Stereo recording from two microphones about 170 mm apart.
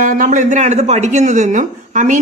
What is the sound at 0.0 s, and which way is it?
A woman's voice, 50° right (ahead or behind).